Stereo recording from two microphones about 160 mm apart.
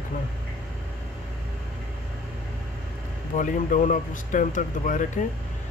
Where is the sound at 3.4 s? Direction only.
55° left (ahead or behind).